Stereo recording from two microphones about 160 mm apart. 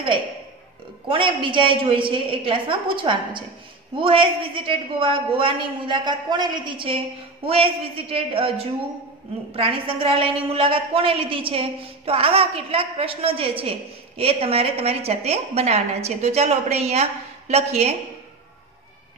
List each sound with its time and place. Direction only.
1.0 s a woman's voice: 30° right (ahead or behind)